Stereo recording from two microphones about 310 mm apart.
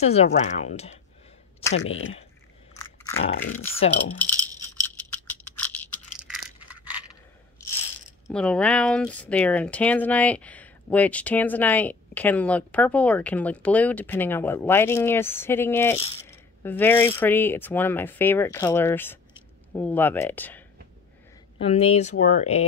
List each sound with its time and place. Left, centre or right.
0.0 s speech: centre
1.7 s speech: left
3.3 s speech: left
4.2 s rattle: centre
6.7 s a sound: centre
8.3 s speech: centre
21.5 s speech: centre